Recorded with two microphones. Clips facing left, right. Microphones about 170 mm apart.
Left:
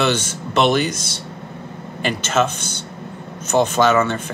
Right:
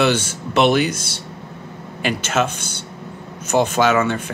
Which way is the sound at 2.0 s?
5° right (ahead or behind).